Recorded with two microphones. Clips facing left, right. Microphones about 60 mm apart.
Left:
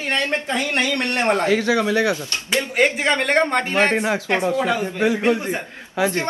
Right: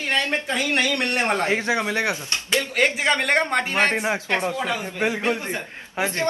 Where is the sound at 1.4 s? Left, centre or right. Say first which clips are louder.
Left 4 dB; right.